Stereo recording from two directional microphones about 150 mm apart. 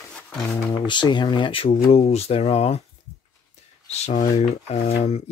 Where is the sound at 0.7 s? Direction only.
30° left (ahead or behind).